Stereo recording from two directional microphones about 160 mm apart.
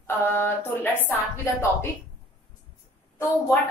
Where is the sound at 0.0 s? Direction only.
15° left (ahead or behind).